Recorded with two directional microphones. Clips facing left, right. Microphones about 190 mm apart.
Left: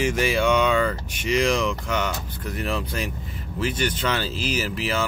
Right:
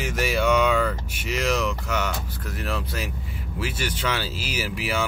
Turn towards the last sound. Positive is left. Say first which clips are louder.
# left 2 dB
turn(degrees=-10)  # may be behind; listen again after turning